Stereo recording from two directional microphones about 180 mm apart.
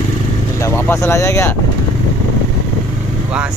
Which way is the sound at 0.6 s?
15° left (ahead or behind).